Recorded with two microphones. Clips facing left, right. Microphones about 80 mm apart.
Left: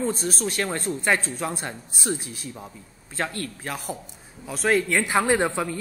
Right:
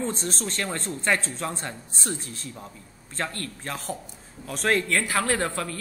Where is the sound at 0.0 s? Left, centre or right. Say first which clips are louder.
Left 3 dB; centre.